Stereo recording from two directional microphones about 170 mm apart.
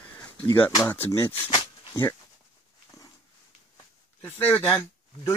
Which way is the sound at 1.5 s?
30° left (ahead or behind).